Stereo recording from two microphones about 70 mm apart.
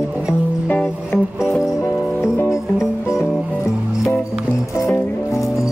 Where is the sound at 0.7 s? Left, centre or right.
Left.